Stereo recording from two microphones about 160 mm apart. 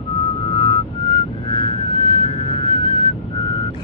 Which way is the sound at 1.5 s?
30° left (ahead or behind).